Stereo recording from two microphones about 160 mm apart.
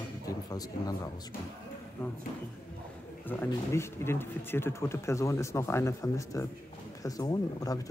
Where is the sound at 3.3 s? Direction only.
15° left (ahead or behind).